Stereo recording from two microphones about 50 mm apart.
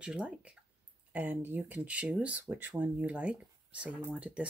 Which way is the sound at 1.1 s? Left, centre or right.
Right.